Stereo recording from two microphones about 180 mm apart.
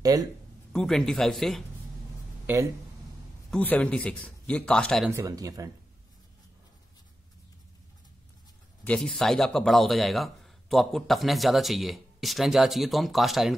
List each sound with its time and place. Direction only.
0.0 s speech: 20° right (ahead or behind)
0.7 s speech: 5° left (ahead or behind)
2.4 s speech: 15° right (ahead or behind)
3.4 s speech: 5° left (ahead or behind)
5.1 s speech: 15° right (ahead or behind)
8.8 s speech: 5° left (ahead or behind)